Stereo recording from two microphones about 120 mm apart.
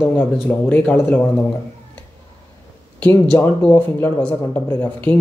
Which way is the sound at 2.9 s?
15° left (ahead or behind).